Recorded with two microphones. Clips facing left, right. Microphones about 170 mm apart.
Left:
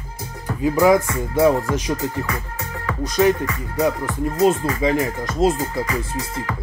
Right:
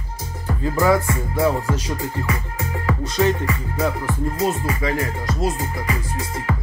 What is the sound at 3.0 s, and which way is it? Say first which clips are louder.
Music: left 4 dB; 15° left (ahead or behind).